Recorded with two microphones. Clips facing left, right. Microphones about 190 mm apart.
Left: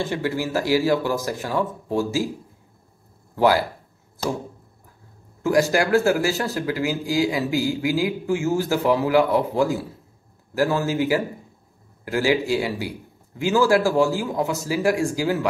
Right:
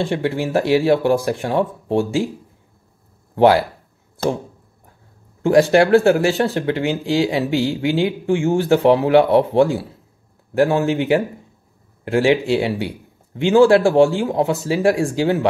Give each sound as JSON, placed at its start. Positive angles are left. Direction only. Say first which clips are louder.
{"t": 0.0, "sound": "speech", "louder": "right 4 dB", "side_deg": -25}
{"t": 3.3, "sound": "speech", "louder": "right 5 dB", "side_deg": -25}
{"t": 5.4, "sound": "speech", "louder": "right 6 dB", "side_deg": -30}